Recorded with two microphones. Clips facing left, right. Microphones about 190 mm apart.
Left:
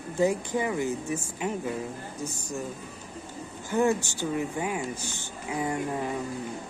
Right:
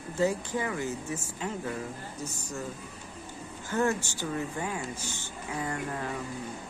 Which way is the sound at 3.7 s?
15° left (ahead or behind).